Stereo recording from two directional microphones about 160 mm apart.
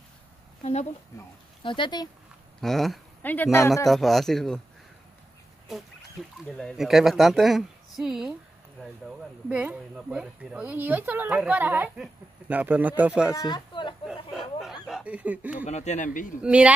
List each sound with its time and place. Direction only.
1.6 s speech: 30° left (ahead or behind)
2.6 s speech: centre (ahead or behind); by 3.8 s 20° left (ahead or behind)
3.8 s speech: centre (ahead or behind)
6.6 s speech: centre (ahead or behind)
9.5 s a woman's voice: 10° right (ahead or behind)
13.5 s speech: 30° left (ahead or behind)
14.0 s snicker: centre (ahead or behind)
15.6 s speech: 45° left (ahead or behind)
16.4 s a woman's voice: 10° right (ahead or behind)